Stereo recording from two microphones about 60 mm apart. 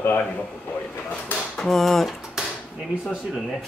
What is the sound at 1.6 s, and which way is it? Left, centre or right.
Speech, centre.